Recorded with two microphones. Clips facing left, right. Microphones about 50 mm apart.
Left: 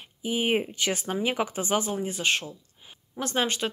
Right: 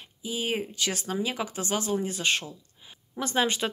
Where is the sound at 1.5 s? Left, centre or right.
Centre.